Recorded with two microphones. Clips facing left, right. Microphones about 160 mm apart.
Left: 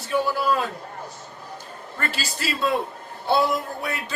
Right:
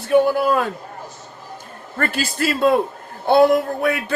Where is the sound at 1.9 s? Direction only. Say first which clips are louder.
Right 8 dB; 50° right (ahead or behind).